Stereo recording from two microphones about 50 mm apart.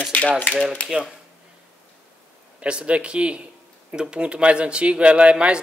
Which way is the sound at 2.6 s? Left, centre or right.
Centre.